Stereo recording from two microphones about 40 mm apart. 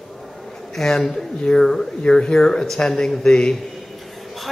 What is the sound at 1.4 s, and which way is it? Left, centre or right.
A man's voice, left.